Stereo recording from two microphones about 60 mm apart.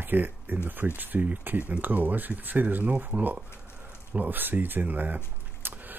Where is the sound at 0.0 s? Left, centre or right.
Right.